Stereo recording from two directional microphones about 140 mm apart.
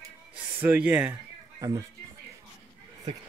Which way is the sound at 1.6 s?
25° right (ahead or behind).